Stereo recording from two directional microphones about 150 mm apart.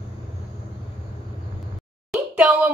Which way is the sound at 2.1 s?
5° right (ahead or behind).